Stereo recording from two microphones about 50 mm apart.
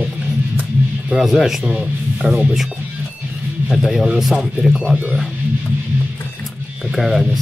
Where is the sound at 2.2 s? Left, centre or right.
Centre.